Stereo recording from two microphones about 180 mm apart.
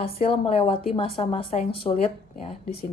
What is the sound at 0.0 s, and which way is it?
A woman's voice, 30° left (ahead or behind).